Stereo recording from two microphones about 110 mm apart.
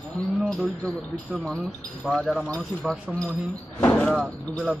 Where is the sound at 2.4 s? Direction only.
10° left (ahead or behind).